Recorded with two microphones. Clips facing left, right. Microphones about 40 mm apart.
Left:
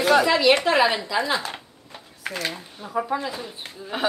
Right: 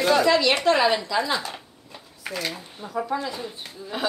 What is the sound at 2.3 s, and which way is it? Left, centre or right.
Speech, left.